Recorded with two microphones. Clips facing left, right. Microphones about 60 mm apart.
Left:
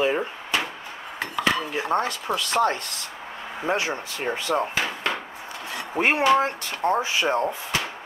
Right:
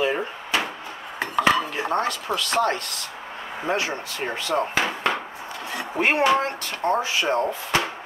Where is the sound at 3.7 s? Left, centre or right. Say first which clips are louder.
Even; centre.